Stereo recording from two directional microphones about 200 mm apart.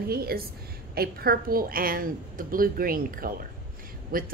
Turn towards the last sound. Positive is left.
turn(degrees=-45)  # may be behind; listen again after turning